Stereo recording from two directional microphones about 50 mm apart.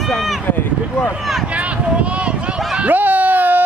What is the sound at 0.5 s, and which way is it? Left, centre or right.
Speech, left.